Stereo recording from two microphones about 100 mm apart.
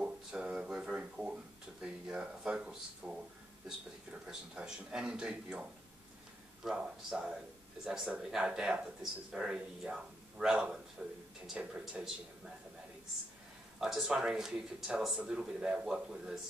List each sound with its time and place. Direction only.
0.0 s a sound: 10° right (ahead or behind)
4.3 s speech: 5° right (ahead or behind)
13.7 s speech: 5° right (ahead or behind)